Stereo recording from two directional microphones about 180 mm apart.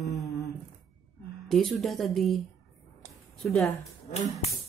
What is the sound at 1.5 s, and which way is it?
Speech, centre (ahead or behind).